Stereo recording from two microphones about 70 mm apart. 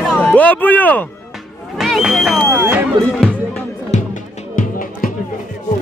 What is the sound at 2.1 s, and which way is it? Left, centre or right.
Speech, centre.